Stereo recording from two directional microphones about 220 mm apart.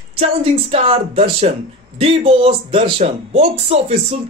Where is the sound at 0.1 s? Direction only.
25° right (ahead or behind).